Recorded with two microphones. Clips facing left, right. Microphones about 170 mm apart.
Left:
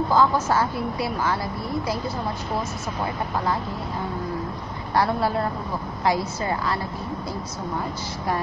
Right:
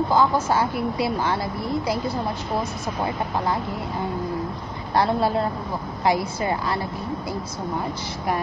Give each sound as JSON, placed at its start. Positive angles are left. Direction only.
{"t": 0.1, "sound": "a woman's voice", "side_deg": -20}
{"t": 4.9, "sound": "a woman's voice", "side_deg": -20}